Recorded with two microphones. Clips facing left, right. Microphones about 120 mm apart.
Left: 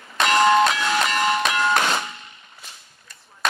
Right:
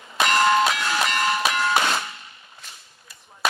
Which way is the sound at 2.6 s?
5° right (ahead or behind).